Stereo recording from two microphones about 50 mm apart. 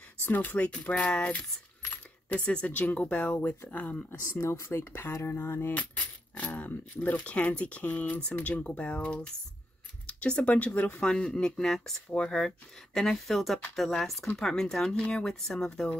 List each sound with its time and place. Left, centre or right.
0.2 s speech: left
3.3 s speech: left
4.3 s speech: left
5.3 s a sound: left
6.3 s speech: left
11.0 s speech: centre
13.4 s speech: centre